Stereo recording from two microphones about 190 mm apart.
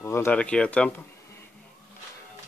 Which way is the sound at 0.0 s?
15° left (ahead or behind).